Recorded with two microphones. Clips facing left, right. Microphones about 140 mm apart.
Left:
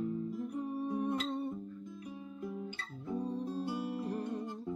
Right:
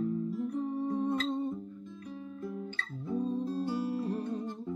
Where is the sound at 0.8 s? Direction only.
20° right (ahead or behind).